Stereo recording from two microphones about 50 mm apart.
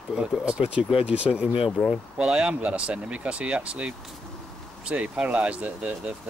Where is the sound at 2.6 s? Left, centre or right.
Right.